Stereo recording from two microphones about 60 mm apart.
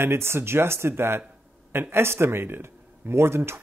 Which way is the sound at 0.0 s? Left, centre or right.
Right.